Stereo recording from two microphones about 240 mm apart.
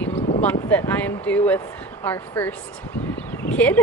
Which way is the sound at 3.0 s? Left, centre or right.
Centre.